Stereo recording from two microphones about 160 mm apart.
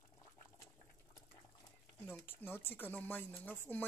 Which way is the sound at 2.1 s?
10° left (ahead or behind).